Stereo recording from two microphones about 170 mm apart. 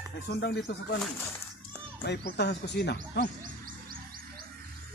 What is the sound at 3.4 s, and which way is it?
Music, 55° right (ahead or behind).